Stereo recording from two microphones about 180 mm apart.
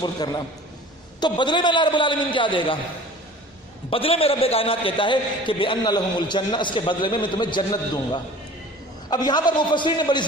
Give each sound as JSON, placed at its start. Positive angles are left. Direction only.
{"t": 0.0, "sound": "a man's voice", "side_deg": 20}
{"t": 3.9, "sound": "a man's voice", "side_deg": 30}